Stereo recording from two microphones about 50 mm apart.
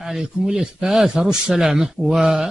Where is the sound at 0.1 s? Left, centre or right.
Centre.